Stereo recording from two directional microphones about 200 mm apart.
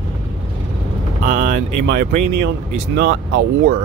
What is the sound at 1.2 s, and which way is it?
Speech, 45° right (ahead or behind).